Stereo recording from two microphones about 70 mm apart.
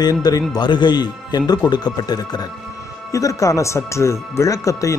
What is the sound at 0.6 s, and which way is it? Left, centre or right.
A man's voice, left.